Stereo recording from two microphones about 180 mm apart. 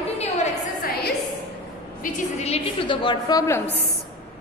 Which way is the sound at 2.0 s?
40° left (ahead or behind).